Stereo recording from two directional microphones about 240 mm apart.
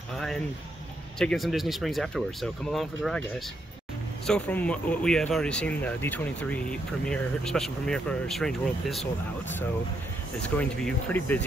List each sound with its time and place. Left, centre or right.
1.2 s speech: centre
4.3 s speech: centre